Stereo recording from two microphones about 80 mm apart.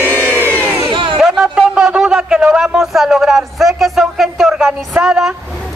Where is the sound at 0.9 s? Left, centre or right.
Right.